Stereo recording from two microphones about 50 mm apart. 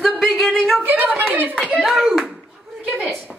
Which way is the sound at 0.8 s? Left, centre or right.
Right.